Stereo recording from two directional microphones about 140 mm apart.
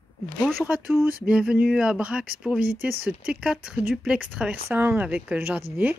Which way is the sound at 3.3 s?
5° right (ahead or behind).